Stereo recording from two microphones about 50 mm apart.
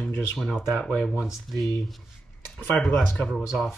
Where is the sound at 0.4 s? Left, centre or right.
Centre.